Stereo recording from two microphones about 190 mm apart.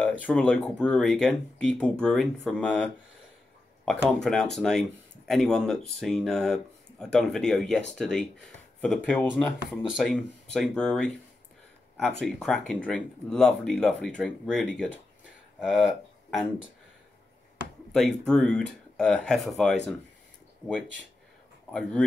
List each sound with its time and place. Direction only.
0.2 s speech: 5° left (ahead or behind)
12.2 s speech: 5° left (ahead or behind)
17.9 s speech: 5° left (ahead or behind)